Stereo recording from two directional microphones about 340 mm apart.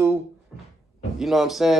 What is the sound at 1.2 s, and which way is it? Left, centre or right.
Speech, centre.